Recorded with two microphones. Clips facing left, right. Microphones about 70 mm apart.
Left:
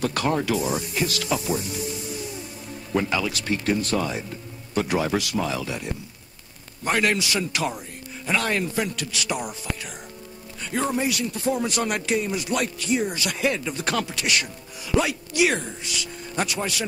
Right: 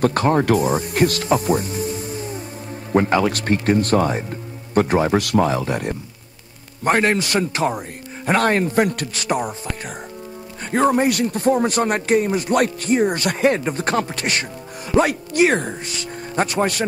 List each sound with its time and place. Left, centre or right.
0.0 s speech: right
1.2 s music: right
2.9 s speech: right
5.2 s speech: right
6.8 s speech: right
10.7 s speech: right